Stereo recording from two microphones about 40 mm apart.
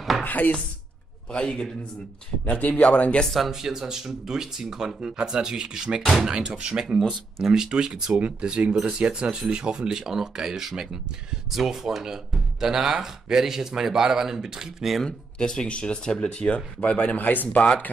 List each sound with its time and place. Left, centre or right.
0.2 s speech: left
1.3 s speech: left
2.4 s speech: left
2.7 s speech: left
3.3 s speech: centre
15.0 s speech: left
17.2 s speech: left